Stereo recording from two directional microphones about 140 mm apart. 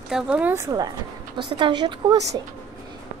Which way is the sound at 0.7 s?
30° right (ahead or behind).